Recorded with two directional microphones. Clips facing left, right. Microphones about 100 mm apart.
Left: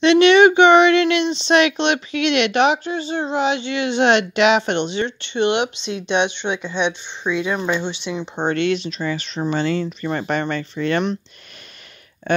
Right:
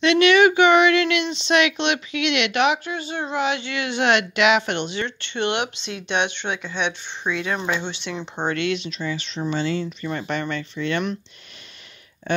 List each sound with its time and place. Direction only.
0.0 s speech: 25° left (ahead or behind)
8.4 s speech: 30° left (ahead or behind)
12.3 s speech: 55° left (ahead or behind)